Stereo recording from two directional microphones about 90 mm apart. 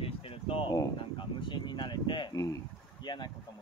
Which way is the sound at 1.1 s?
60° left (ahead or behind).